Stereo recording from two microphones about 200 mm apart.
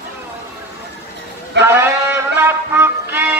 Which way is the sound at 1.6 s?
10° right (ahead or behind).